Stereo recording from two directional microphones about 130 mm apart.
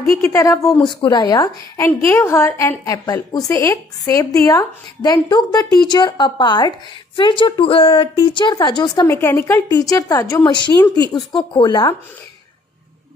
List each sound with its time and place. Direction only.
0.2 s a woman's voice: 25° left (ahead or behind)
0.8 s a woman's voice: 35° left (ahead or behind)
9.0 s a woman's voice: 20° left (ahead or behind); by 11.9 s 35° left (ahead or behind)